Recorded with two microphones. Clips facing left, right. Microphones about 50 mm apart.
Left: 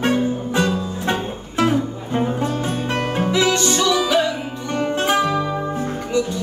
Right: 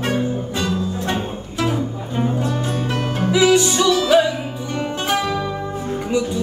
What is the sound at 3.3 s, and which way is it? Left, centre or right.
Music, centre.